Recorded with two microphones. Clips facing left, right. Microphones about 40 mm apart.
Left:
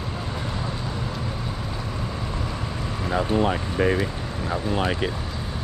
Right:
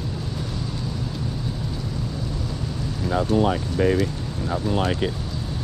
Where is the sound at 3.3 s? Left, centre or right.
Left.